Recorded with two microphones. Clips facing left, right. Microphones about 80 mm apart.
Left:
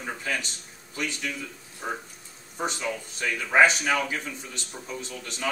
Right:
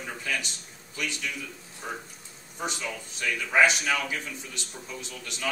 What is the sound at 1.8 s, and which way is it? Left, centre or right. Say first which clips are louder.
Speech: left 4 dB; centre.